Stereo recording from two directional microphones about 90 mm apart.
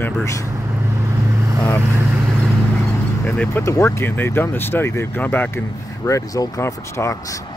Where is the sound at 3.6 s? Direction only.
30° left (ahead or behind).